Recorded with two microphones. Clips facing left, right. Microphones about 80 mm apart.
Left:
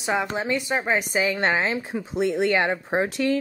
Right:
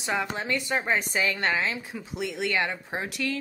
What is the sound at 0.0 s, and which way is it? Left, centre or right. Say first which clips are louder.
Speech: left 4 dB; centre.